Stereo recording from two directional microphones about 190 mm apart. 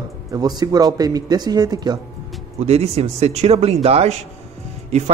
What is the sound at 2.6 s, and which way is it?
A man's voice, 35° right (ahead or behind).